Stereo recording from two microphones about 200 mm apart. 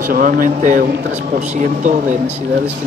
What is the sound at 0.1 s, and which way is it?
Speech, 45° right (ahead or behind).